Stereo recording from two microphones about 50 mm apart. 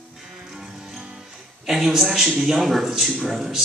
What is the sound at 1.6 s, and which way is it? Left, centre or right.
A man's voice, centre.